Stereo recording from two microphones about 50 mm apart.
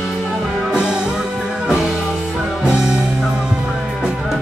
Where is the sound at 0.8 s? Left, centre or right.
Centre.